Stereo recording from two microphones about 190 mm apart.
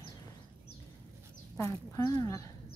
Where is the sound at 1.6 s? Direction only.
15° left (ahead or behind).